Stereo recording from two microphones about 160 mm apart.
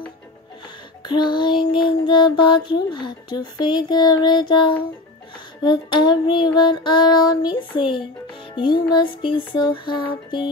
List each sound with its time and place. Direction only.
1.0 s child singing: 30° left (ahead or behind)
8.9 s child singing: 30° left (ahead or behind)